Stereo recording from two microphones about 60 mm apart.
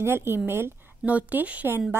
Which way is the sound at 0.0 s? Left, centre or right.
Right.